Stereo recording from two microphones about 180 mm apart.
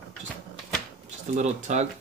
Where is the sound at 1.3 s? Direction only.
40° right (ahead or behind).